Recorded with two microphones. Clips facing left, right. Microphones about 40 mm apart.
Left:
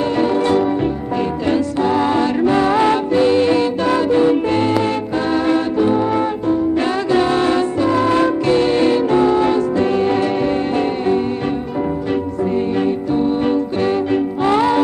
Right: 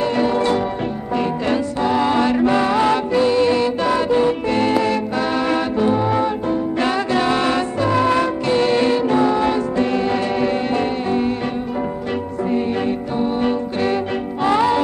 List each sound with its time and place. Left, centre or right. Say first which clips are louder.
1.9 s music: even; right
2.1 s music: left 1 dB; right
2.7 s music: left 2 dB; left
4.1 s music: left 4 dB; centre
7.2 s music: left 2 dB; right
8.5 s music: right 1 dB; right
8.8 s music: left 2 dB; centre